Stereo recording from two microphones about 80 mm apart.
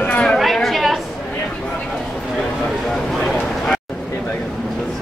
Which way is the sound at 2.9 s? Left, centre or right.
Centre.